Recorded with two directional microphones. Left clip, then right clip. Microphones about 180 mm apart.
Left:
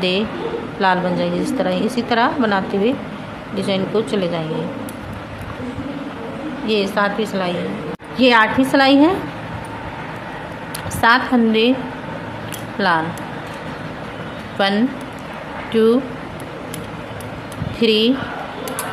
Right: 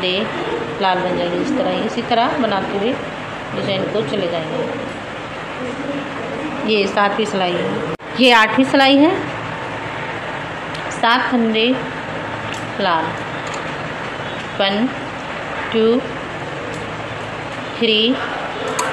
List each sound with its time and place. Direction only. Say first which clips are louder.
0.7 s speech: left 1 dB; 40° left (ahead or behind)
6.7 s a woman's voice: right 2 dB; 15° left (ahead or behind)
11.0 s speech: left 1 dB; 35° left (ahead or behind)
12.8 s speech: left 1 dB; 40° left (ahead or behind)
14.6 s speech: even; 35° left (ahead or behind)
17.7 s speech: even; 35° left (ahead or behind)